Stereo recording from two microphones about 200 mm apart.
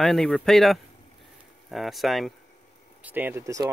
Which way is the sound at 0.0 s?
Centre (ahead or behind).